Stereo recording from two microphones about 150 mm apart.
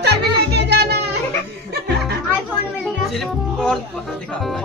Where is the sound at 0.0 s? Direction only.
90° right.